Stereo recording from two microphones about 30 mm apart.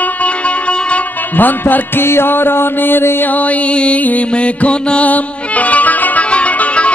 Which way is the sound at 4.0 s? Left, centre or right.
Left.